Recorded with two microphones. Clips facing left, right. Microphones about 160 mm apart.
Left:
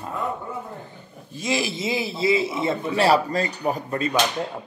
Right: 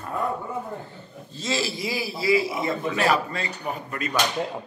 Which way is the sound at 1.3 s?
15° left (ahead or behind).